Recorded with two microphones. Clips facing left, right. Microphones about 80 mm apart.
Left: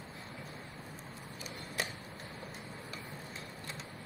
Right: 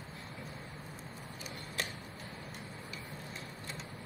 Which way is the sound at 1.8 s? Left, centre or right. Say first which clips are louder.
Left 1 dB; centre.